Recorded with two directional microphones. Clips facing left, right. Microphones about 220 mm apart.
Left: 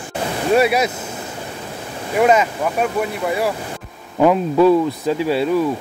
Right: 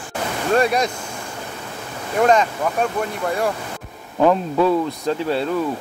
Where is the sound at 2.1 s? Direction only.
10° left (ahead or behind).